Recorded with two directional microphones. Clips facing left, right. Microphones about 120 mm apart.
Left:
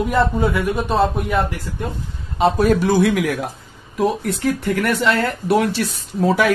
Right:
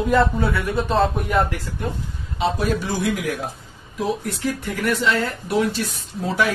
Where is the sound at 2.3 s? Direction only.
50° left (ahead or behind); by 3.4 s 70° left (ahead or behind).